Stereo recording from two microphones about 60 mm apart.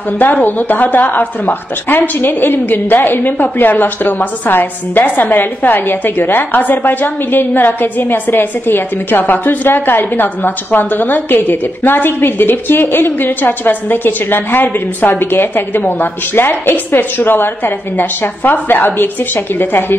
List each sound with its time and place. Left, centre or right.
0.2 s a woman's voice: left